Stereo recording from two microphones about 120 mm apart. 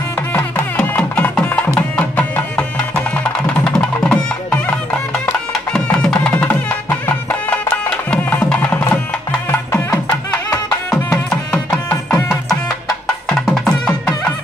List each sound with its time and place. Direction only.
0.3 s music: 20° left (ahead or behind)
11.2 s music: 10° left (ahead or behind)
11.9 s music: 20° left (ahead or behind)
12.3 s music: centre (ahead or behind)